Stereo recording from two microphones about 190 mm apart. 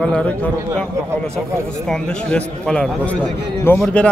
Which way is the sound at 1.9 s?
5° left (ahead or behind).